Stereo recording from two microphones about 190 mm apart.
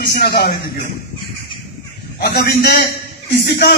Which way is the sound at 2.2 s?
60° left (ahead or behind).